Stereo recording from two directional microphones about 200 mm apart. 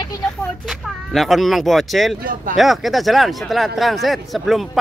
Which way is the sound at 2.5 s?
Centre (ahead or behind).